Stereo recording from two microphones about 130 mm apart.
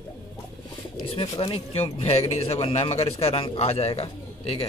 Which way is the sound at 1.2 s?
45° left (ahead or behind).